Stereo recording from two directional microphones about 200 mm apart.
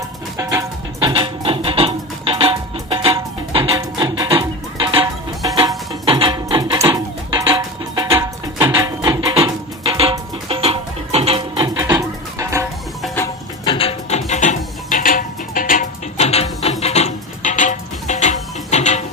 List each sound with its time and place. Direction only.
0.4 s music: 15° right (ahead or behind)
13.7 s music: 30° left (ahead or behind)